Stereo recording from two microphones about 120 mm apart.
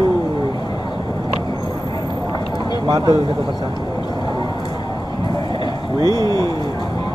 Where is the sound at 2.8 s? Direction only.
35° right (ahead or behind).